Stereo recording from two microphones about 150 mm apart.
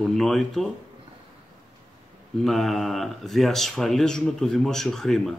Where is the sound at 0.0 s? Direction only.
Centre (ahead or behind).